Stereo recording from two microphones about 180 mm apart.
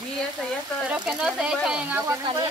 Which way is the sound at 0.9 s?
5° right (ahead or behind).